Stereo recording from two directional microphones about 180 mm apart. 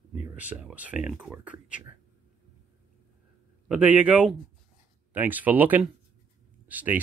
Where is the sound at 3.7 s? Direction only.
5° right (ahead or behind).